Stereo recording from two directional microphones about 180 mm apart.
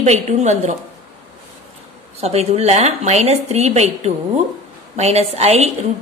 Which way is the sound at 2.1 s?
35° right (ahead or behind).